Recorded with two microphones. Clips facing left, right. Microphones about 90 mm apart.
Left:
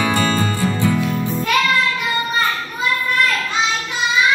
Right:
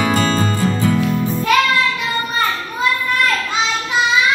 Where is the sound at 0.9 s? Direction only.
5° left (ahead or behind).